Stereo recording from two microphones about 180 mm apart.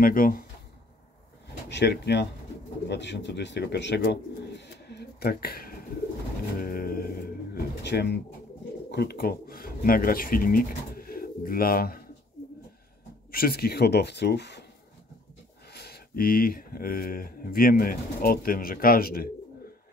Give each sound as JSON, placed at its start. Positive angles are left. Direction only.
{"t": 0.0, "sound": "speech", "side_deg": 50}
{"t": 1.7, "sound": "speech", "side_deg": 70}
{"t": 6.6, "sound": "pigeon", "side_deg": 55}
{"t": 8.9, "sound": "speech", "side_deg": 60}
{"t": 13.3, "sound": "speech", "side_deg": 55}
{"t": 15.7, "sound": "speech", "side_deg": 60}